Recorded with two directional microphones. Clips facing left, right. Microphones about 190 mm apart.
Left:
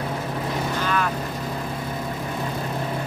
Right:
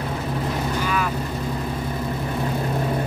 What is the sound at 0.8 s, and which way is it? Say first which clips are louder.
Vehicle: left 2 dB; 5° right (ahead or behind).